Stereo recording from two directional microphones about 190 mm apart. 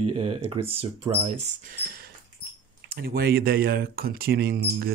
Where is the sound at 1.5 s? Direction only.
55° right (ahead or behind).